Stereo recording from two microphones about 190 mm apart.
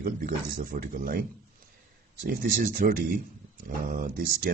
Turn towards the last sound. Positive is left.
turn(degrees=-50)  # may be behind; listen again after turning